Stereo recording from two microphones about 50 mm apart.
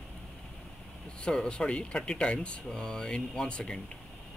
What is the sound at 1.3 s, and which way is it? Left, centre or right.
Speech, left.